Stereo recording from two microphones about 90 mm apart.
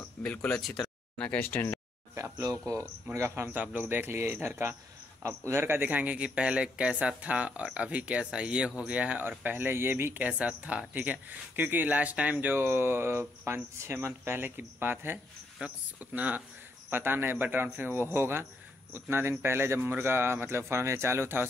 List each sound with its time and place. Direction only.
0.2 s speech: 15° left (ahead or behind)
0.5 s speech: centre (ahead or behind)
0.8 s speech: 15° left (ahead or behind)
2.1 s speech: 30° right (ahead or behind)
3.5 s speech: 20° right (ahead or behind)